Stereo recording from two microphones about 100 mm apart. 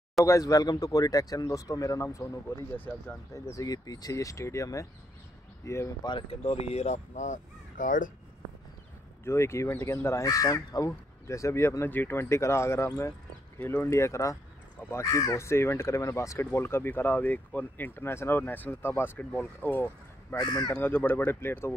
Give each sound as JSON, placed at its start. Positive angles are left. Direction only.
{"t": 0.2, "sound": "speech", "side_deg": 35}
{"t": 6.0, "sound": "speech", "side_deg": 45}
{"t": 6.4, "sound": "speech", "side_deg": 85}
{"t": 9.2, "sound": "speech", "side_deg": 25}
{"t": 20.3, "sound": "speech", "side_deg": 40}
{"t": 20.8, "sound": "speech", "side_deg": 20}